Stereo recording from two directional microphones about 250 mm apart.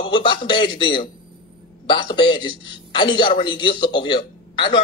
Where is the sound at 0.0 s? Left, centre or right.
Centre.